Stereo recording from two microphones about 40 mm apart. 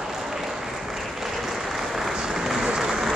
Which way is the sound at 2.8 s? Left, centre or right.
Centre.